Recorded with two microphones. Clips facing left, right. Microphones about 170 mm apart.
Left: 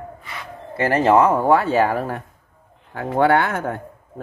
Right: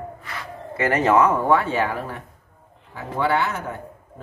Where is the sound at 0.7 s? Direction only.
30° left (ahead or behind).